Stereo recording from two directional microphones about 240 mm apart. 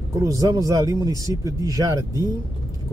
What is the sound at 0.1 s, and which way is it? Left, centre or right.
Speech, centre.